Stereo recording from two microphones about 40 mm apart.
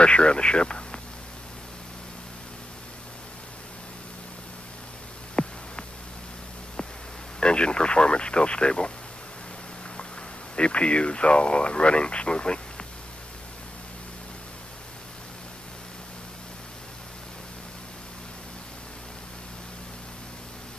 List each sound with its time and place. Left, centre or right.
0.0 s speech: left
5.4 s a sound: left
7.3 s speech: left
10.5 s speech: left